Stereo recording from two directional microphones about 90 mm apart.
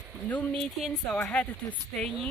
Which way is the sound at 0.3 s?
20° left (ahead or behind).